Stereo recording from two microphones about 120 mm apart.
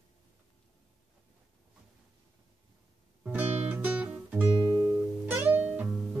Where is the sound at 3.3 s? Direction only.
15° right (ahead or behind).